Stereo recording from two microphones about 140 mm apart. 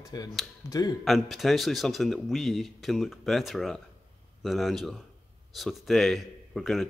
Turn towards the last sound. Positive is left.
turn(degrees=0)  # may be behind; listen again after turning